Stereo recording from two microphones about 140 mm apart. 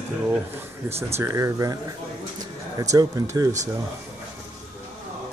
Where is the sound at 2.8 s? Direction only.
25° right (ahead or behind).